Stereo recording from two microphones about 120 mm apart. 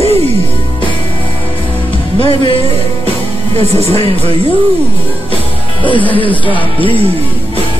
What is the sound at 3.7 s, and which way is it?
Speech, 60° right (ahead or behind).